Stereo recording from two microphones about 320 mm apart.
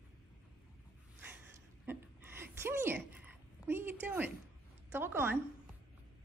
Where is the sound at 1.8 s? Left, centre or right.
Centre.